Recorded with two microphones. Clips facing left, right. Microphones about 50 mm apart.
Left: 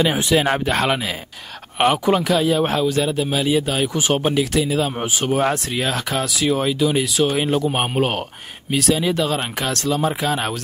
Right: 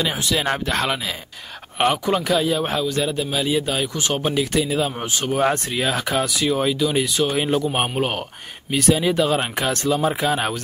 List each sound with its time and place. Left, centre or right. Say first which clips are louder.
0.0 s speech: left 5 dB; centre
4.2 s speech: left 2 dB; centre
4.9 s speech: left 3 dB; centre
5.4 s speech: even; centre
8.8 s speech: right 2 dB; centre